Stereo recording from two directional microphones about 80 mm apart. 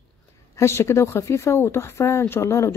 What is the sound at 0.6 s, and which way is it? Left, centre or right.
A woman's voice, left.